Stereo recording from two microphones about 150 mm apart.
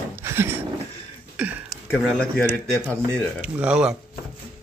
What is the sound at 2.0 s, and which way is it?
Speech, centre (ahead or behind).